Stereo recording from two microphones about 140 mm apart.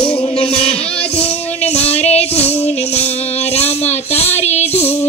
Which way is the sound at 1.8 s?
45° left (ahead or behind).